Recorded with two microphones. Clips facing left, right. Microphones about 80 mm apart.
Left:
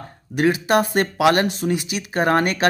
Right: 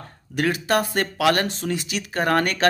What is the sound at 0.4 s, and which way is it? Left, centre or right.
Speech, left.